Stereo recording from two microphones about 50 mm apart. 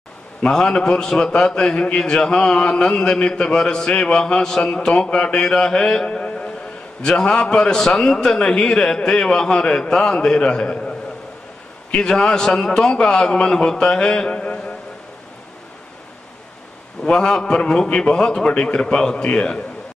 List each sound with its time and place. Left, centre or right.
0.4 s a man's voice: centre
17.0 s a man's voice: centre